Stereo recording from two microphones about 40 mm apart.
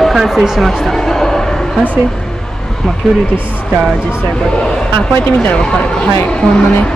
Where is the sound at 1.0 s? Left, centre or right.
Centre.